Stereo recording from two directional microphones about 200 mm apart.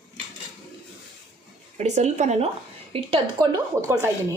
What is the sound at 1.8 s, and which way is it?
A woman's voice, 35° right (ahead or behind).